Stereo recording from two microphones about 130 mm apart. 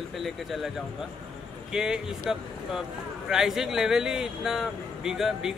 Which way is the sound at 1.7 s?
5° right (ahead or behind).